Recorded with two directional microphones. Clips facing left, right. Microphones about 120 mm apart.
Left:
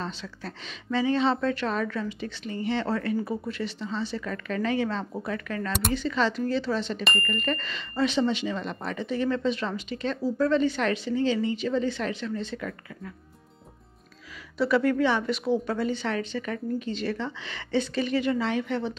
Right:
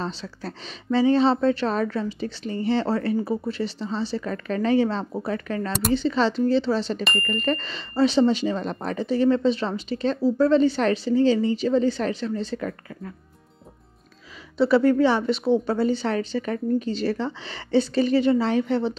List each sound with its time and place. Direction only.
0.0 s speech: 35° right (ahead or behind)
5.7 s speech: centre (ahead or behind)
5.9 s speech: 30° right (ahead or behind)
14.6 s speech: 30° right (ahead or behind)